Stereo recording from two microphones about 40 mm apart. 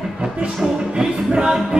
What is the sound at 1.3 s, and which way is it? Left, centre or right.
Music, right.